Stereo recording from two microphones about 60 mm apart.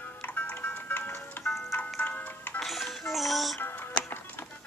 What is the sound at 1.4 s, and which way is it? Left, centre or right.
Music, left.